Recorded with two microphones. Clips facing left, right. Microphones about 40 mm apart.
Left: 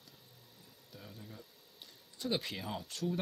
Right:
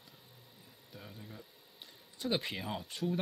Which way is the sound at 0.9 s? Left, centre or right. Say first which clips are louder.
Right 1 dB; centre.